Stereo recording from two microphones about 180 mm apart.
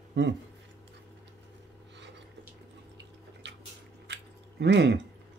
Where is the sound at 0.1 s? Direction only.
80° right.